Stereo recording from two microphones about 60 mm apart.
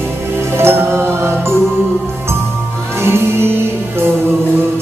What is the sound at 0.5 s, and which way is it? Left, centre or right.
Music, right.